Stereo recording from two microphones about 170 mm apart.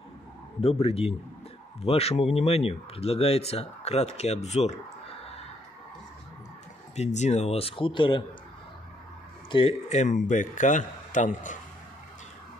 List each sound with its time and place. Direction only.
0.6 s speech: 35° left (ahead or behind)
7.0 s speech: 40° left (ahead or behind)
9.5 s speech: 30° left (ahead or behind)
9.8 s a man's voice: 45° left (ahead or behind)